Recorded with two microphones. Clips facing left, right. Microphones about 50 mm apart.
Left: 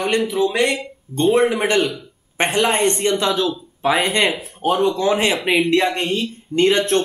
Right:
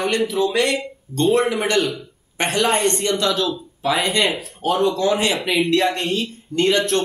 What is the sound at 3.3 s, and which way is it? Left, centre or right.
Speech, centre.